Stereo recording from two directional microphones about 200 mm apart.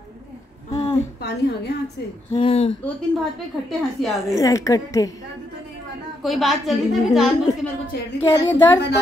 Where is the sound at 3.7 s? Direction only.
Centre (ahead or behind).